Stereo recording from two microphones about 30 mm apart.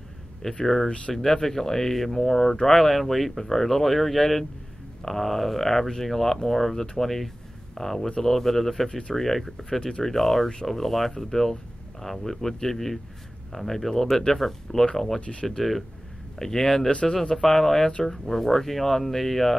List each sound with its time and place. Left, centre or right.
0.4 s speech: left
1.1 s speech: centre
1.4 s speech: centre
9.7 s speech: left
10.0 s speech: centre
16.3 s speech: centre